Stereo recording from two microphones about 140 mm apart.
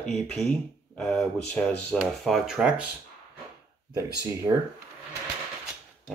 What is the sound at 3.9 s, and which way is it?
Speech, 20° right (ahead or behind).